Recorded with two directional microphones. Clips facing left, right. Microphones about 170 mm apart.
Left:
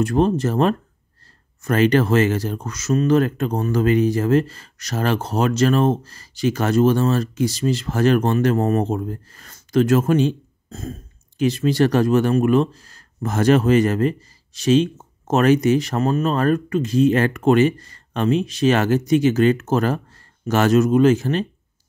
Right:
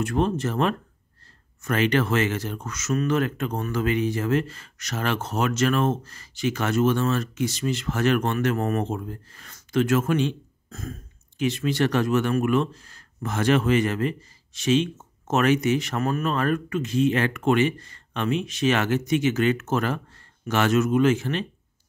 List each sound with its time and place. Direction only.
0.0 s speech: 35° left (ahead or behind)